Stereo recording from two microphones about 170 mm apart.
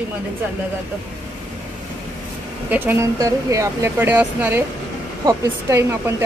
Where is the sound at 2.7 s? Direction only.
15° right (ahead or behind).